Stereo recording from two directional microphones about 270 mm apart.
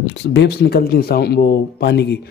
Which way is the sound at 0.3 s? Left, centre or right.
Left.